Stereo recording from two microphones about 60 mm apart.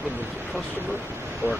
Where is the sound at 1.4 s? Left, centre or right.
Right.